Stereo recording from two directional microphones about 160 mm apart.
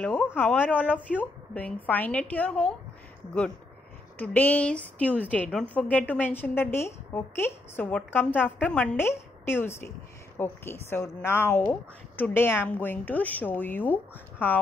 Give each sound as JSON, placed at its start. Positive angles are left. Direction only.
{"t": 0.0, "sound": "a woman's voice", "side_deg": 10}
{"t": 4.2, "sound": "a woman's voice", "side_deg": 10}